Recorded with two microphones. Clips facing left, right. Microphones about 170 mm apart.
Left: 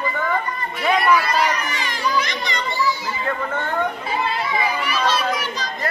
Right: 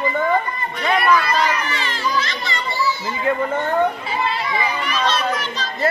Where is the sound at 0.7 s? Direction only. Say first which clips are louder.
Even; 10° left (ahead or behind).